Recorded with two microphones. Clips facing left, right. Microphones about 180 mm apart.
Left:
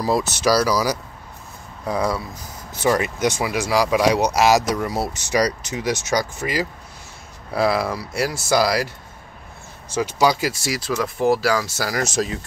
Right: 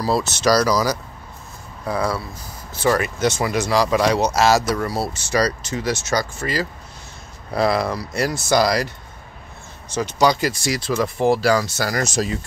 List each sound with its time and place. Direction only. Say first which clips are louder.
0.0 s speech: even; 15° left (ahead or behind)
7.5 s speech: right 1 dB; 5° left (ahead or behind)